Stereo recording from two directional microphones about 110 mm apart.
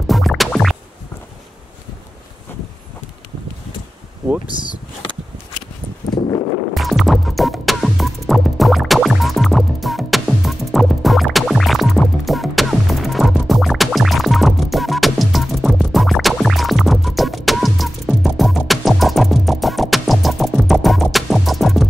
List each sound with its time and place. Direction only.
0.0 s music: centre (ahead or behind)
6.0 s a sound: 40° left (ahead or behind)
6.7 s music: centre (ahead or behind)